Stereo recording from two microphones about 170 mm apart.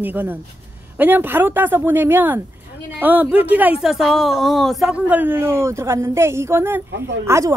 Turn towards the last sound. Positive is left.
turn(degrees=-15)  # may be behind; listen again after turning